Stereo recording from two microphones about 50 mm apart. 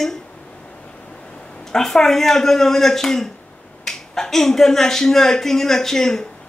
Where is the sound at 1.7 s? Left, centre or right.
Centre.